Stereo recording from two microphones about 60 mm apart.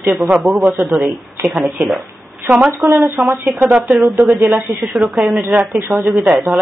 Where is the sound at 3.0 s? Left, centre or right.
Right.